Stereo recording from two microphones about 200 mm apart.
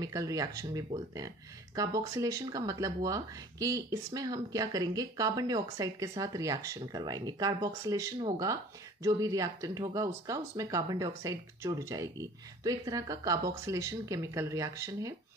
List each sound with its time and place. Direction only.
0.0 s speech: 15° right (ahead or behind)